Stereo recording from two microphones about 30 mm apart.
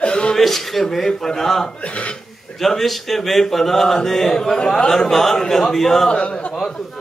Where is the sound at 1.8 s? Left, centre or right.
Left.